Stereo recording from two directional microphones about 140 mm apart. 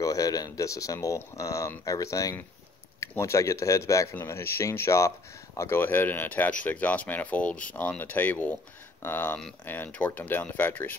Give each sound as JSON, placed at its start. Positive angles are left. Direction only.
{"t": 0.0, "sound": "speech", "side_deg": 25}